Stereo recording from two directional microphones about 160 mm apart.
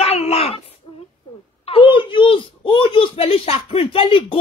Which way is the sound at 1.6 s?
35° left (ahead or behind).